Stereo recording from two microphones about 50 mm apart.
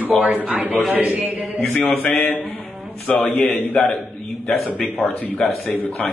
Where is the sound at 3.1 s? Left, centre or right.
Left.